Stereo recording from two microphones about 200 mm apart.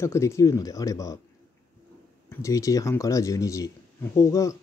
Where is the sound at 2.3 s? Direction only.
15° left (ahead or behind).